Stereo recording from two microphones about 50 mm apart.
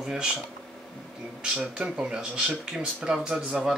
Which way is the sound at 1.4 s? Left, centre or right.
Centre.